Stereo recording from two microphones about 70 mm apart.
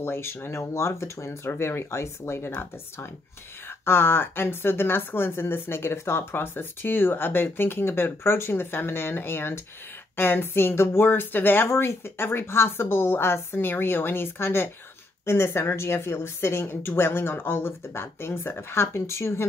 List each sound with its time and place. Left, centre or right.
0.0 s a woman's voice: left
3.8 s a woman's voice: left